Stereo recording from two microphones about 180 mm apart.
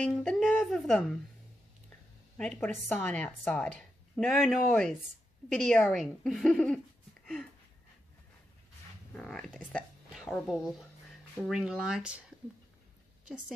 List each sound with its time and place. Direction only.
0.0 s speech: 5° left (ahead or behind)
2.3 s a woman's voice: 5° left (ahead or behind)
9.1 s a woman's voice: 5° left (ahead or behind)